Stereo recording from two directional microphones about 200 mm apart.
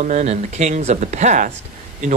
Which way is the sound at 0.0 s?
35° right (ahead or behind).